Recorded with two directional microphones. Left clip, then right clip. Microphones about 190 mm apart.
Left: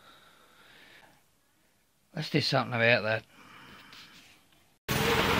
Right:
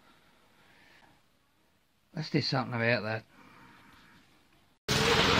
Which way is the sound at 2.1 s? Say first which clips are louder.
Left 3 dB; 15° left (ahead or behind).